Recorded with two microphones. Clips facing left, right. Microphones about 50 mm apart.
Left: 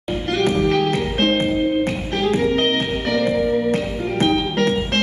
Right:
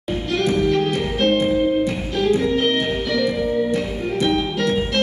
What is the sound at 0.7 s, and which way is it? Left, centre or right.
Music, left.